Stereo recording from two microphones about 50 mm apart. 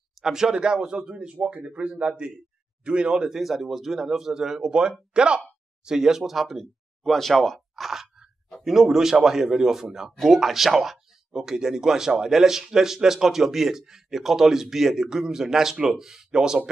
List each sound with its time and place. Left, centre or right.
0.2 s speech: centre
3.3 s speech: centre